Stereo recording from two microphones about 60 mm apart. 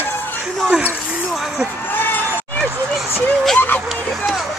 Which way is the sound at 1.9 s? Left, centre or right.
Left.